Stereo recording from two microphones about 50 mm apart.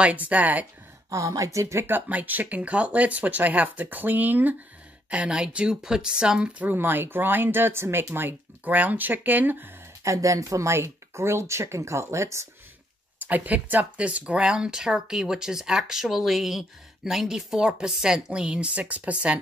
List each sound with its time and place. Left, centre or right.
0.0 s speech: right
1.1 s speech: right
1.9 s speech: right
5.1 s speech: centre
6.6 s speech: right
8.1 s speech: right
10.0 s speech: right
13.2 s speech: right